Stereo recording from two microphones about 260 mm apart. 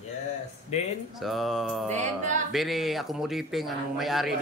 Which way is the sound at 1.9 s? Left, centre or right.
Right.